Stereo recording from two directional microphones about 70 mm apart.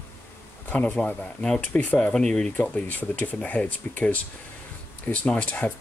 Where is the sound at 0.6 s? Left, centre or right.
Centre.